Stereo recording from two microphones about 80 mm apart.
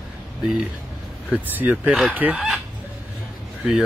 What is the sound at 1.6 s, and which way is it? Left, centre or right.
Speech, right.